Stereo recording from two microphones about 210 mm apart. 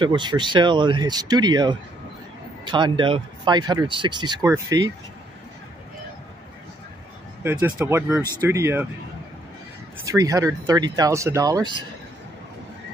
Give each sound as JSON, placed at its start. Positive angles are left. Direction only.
{"t": 0.0, "sound": "speech", "side_deg": -20}
{"t": 7.4, "sound": "speech", "side_deg": -10}
{"t": 10.0, "sound": "speech", "side_deg": -15}